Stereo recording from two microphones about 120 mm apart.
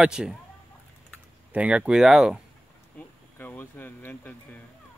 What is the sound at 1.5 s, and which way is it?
Speech, 10° right (ahead or behind).